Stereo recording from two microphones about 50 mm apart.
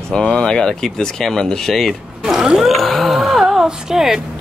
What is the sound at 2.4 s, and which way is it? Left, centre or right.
Speech, centre.